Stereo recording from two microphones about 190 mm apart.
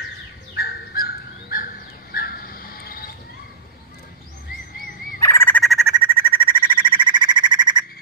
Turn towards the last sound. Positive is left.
turn(degrees=-25)  # may be behind; listen again after turning